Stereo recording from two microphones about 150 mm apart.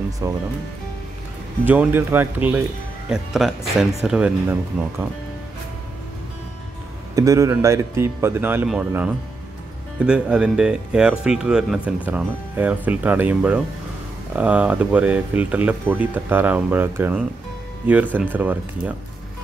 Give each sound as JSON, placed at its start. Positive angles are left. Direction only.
{"t": 0.2, "sound": "speech", "side_deg": -25}
{"t": 1.7, "sound": "speech", "side_deg": -10}
{"t": 3.1, "sound": "speech", "side_deg": 0}
{"t": 7.2, "sound": "speech", "side_deg": -20}